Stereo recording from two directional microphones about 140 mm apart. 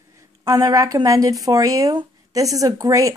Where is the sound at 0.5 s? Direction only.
25° right (ahead or behind).